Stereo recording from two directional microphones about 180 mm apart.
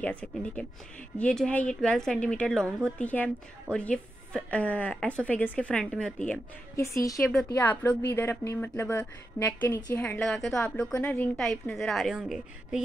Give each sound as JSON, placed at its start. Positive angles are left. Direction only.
{"t": 0.0, "sound": "a woman's voice", "side_deg": 5}
{"t": 7.2, "sound": "a woman's voice", "side_deg": 10}